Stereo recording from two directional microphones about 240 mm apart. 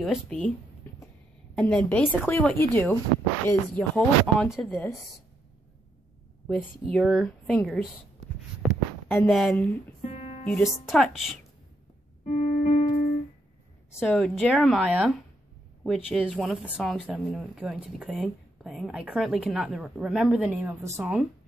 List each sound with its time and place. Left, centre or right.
0.0 s speech: centre
1.5 s speech: centre
6.4 s speech: centre
9.1 s a woman's voice: centre
10.0 s music: left
10.9 s speech: centre
12.3 s music: left
13.9 s speech: centre